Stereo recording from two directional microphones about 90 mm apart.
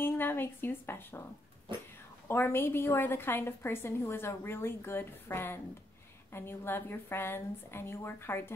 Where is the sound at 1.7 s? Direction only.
60° right (ahead or behind).